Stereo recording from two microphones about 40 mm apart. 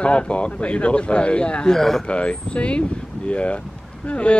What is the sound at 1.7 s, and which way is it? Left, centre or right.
Speech, centre.